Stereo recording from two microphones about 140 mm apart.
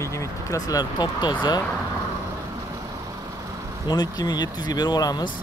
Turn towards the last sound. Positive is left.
turn(degrees=30)  # may be behind; listen again after turning